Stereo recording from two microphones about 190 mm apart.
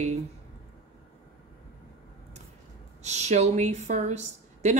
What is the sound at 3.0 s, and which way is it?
Speech, 35° right (ahead or behind).